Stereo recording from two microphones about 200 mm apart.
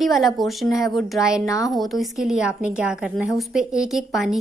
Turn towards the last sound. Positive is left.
turn(degrees=0)  # may be behind; listen again after turning